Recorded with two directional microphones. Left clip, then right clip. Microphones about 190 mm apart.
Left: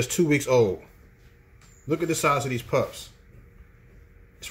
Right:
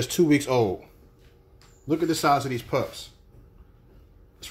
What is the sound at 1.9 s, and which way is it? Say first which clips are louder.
Speech: right 1 dB; 10° right (ahead or behind).